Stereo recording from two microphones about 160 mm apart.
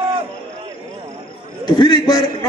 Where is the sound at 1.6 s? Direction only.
30° left (ahead or behind).